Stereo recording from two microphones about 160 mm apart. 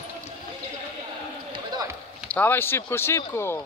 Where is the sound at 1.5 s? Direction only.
25° right (ahead or behind).